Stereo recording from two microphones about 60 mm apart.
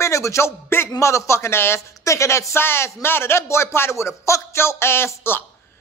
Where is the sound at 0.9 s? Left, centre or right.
Left.